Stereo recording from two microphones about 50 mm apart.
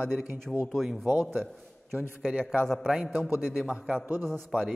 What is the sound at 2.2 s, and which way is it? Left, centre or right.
Speech, right.